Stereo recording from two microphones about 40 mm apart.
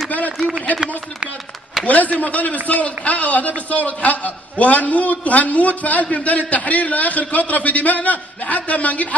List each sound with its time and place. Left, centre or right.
1.9 s a man's voice: left